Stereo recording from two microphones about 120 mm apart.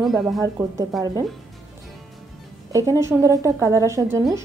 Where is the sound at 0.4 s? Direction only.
30° right (ahead or behind).